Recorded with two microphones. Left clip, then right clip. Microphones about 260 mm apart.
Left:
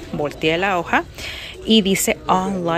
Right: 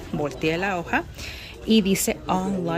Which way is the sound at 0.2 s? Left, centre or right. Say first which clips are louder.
Left 6 dB; centre.